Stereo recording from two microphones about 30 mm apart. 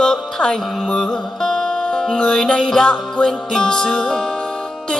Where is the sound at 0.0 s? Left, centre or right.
Left.